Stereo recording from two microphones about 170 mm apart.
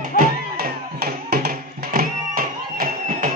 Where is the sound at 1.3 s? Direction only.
65° right (ahead or behind).